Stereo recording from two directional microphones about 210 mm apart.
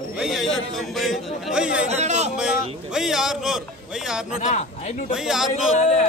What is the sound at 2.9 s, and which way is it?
Speech, 5° right (ahead or behind).